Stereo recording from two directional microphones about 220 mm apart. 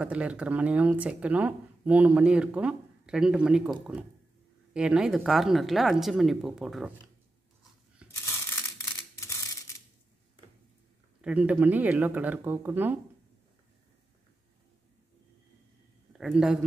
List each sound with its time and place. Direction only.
0.0 s speech: 5° right (ahead or behind)
4.7 s speech: 5° right (ahead or behind)
8.0 s a sound: 5° right (ahead or behind)
9.2 s typewriter: 15° left (ahead or behind)
11.1 s speech: 5° right (ahead or behind)
16.1 s a man's voice: 5° right (ahead or behind)